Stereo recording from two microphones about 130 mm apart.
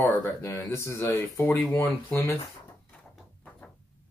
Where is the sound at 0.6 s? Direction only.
20° left (ahead or behind).